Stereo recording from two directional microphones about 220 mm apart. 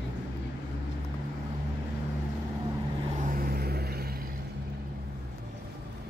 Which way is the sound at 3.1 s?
40° right (ahead or behind).